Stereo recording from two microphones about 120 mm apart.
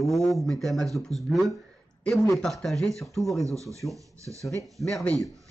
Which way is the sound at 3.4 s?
25° right (ahead or behind).